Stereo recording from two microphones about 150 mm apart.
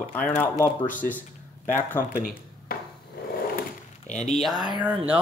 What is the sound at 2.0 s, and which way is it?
Speech, 70° left (ahead or behind).